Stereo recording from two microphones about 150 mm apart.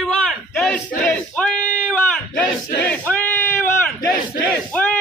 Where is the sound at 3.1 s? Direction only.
15° left (ahead or behind).